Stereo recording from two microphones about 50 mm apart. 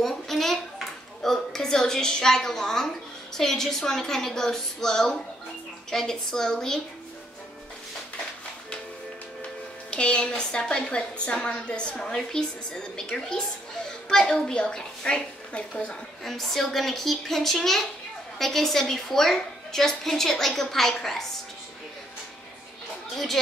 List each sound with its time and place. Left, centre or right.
0.0 s a sound: centre
1.2 s a woman's voice: centre
9.8 s a woman's voice: left
16.3 s a woman's voice: centre
23.1 s a woman's voice: centre